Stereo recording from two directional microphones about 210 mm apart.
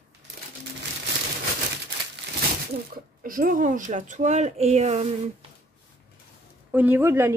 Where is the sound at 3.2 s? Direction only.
40° right (ahead or behind).